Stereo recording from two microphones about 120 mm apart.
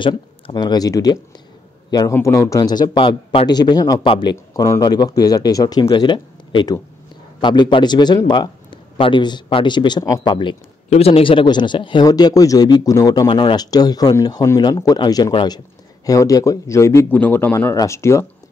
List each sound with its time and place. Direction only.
0.0 s a man's voice: 40° left (ahead or behind)
2.1 s a man's voice: 25° left (ahead or behind); by 10.6 s 40° left (ahead or behind)
10.9 s speech: 55° left (ahead or behind); by 13.3 s 30° left (ahead or behind)
13.3 s a man's voice: 45° left (ahead or behind); by 18.2 s 25° left (ahead or behind)